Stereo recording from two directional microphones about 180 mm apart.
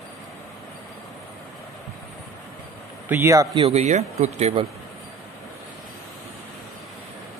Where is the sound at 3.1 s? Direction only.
15° right (ahead or behind).